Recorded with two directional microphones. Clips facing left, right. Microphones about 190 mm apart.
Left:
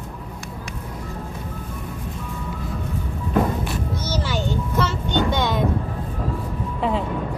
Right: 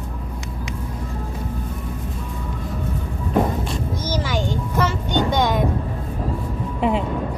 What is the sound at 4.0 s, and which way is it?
Music, 10° right (ahead or behind).